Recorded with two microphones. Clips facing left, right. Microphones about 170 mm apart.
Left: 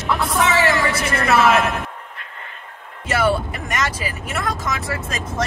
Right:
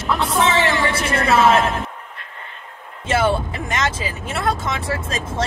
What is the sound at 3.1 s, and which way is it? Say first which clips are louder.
Speech: right 1 dB; 25° right (ahead or behind).